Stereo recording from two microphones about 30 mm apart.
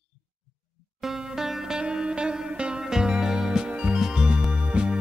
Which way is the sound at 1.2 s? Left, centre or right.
Centre.